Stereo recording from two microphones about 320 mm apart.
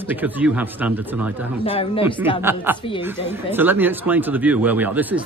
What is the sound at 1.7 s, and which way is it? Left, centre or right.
Speech, centre.